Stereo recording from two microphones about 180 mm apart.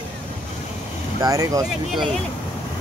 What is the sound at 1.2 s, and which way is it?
Speech, 20° right (ahead or behind).